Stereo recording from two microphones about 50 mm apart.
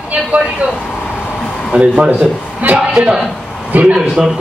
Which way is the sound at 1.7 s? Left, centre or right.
Right.